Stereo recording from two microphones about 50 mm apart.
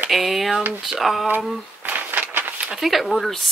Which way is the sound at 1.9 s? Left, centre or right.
Right.